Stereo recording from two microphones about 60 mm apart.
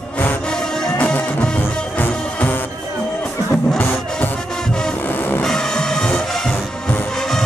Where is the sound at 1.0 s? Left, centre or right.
Left.